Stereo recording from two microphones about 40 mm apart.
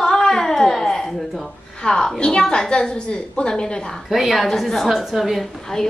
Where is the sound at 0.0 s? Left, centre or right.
Centre.